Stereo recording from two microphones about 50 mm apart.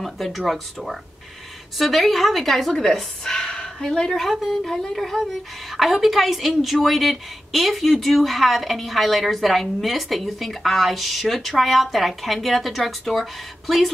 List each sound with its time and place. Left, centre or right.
0.0 s a woman's voice: centre